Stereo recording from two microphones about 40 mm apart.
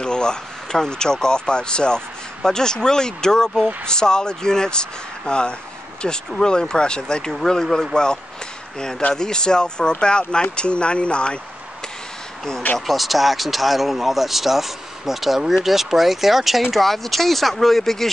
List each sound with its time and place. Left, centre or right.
0.0 s speech: centre
12.7 s speech: centre